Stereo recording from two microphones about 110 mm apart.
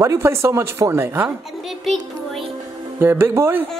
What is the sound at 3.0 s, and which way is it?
Speech, 20° right (ahead or behind).